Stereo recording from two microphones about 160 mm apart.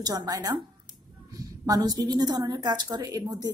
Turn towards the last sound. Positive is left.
turn(degrees=-25)  # may be behind; listen again after turning